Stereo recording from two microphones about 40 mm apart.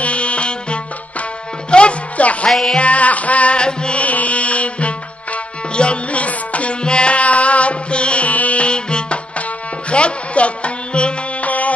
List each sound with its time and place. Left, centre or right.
0.0 s music: left
4.0 s music: left